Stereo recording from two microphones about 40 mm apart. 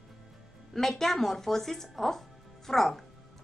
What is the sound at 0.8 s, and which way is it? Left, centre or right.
A woman's voice, centre.